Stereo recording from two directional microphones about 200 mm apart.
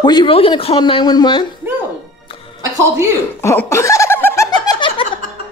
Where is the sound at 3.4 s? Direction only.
15° left (ahead or behind).